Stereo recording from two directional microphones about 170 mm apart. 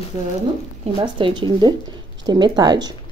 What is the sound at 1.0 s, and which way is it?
A woman's voice, 30° right (ahead or behind).